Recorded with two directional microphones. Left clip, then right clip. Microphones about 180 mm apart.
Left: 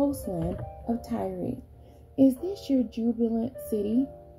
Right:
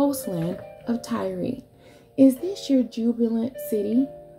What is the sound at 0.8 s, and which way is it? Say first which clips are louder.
Speech: right 4 dB; 5° right (ahead or behind).